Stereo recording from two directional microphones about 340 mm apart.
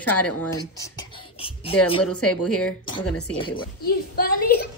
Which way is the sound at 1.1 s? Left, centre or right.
Centre.